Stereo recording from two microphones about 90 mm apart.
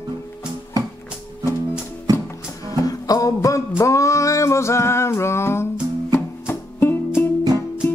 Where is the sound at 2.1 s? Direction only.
45° right (ahead or behind).